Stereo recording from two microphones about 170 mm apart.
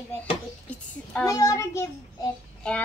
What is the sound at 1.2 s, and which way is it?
A child's voice, 20° left (ahead or behind).